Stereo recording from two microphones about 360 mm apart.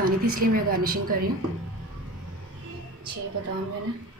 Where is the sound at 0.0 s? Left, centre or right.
Right.